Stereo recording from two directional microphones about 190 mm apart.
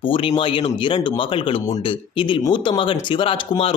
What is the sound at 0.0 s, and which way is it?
Speech, 25° left (ahead or behind).